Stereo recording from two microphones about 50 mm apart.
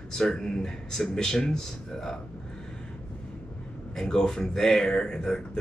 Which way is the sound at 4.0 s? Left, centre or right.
Centre.